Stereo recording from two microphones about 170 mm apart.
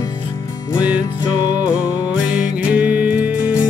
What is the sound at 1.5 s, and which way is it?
Music, 10° right (ahead or behind).